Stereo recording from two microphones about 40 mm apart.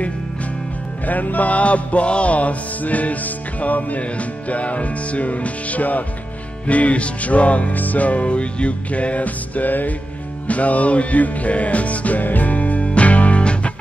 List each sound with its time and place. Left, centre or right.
1.0 s music: left